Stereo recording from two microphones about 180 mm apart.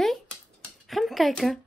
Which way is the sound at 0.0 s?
Centre (ahead or behind).